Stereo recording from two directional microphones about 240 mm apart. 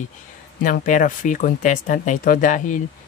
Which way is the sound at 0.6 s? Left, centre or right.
Left.